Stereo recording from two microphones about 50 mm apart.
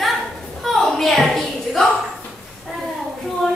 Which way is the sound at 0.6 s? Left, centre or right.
Centre.